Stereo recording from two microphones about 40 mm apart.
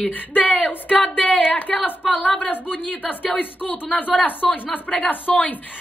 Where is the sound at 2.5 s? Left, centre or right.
Left.